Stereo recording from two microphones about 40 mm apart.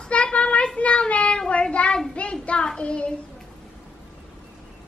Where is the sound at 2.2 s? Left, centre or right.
Left.